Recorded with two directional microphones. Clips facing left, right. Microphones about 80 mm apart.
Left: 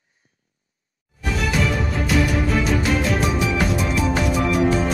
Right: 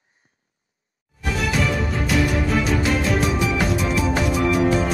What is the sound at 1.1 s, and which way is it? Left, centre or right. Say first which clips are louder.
Music: even; centre.